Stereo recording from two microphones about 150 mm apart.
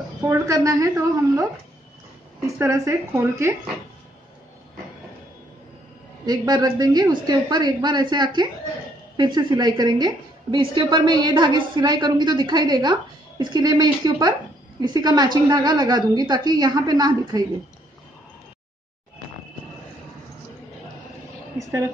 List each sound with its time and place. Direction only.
0.3 s a woman's voice: 20° right (ahead or behind)
2.4 s a woman's voice: 20° right (ahead or behind)
6.2 s a woman's voice: 25° right (ahead or behind)